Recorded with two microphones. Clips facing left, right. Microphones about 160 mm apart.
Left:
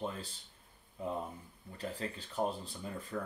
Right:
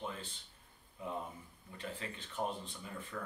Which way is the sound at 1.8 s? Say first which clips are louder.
Left 4 dB; 35° left (ahead or behind).